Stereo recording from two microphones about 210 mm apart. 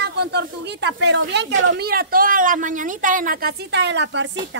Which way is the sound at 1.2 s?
55° right (ahead or behind).